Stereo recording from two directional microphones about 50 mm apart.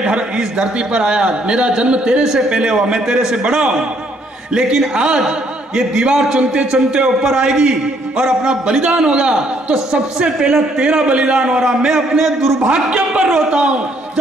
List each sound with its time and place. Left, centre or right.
0.0 s a man's voice: centre
12.6 s a man's voice: right